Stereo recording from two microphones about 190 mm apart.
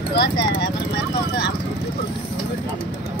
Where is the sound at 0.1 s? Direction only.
60° left (ahead or behind).